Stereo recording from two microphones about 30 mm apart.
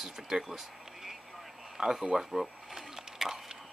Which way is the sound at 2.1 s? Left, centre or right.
Centre.